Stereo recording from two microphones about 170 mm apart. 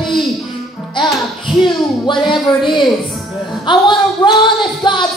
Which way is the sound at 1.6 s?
25° left (ahead or behind).